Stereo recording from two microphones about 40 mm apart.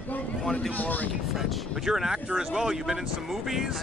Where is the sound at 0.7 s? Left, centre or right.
Left.